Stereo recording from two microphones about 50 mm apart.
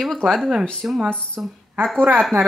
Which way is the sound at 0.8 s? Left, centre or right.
Right.